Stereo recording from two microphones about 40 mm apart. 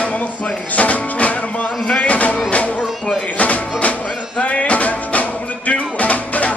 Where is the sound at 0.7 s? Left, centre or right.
Left.